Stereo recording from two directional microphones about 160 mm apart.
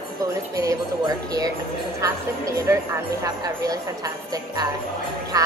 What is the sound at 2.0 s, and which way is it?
Speech, 20° right (ahead or behind).